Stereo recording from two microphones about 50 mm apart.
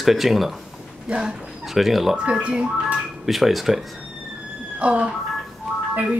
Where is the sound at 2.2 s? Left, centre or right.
Right.